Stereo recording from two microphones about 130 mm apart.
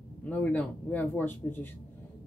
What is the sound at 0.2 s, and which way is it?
Speech, 10° left (ahead or behind).